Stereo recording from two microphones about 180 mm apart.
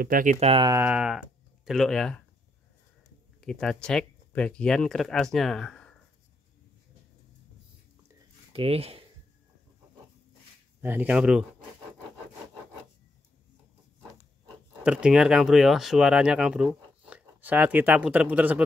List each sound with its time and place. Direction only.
0.0 s speech: 50° right (ahead or behind)
0.7 s speech: 10° right (ahead or behind); by 2.2 s 5° left (ahead or behind)
3.3 s speech: 5° left (ahead or behind)
8.5 s speech: 35° right (ahead or behind)
10.8 s speech: 10° right (ahead or behind)
14.8 s speech: 5° right (ahead or behind)